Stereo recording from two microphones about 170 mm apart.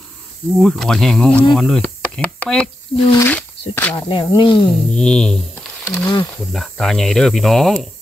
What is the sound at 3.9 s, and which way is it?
Speech, 30° left (ahead or behind).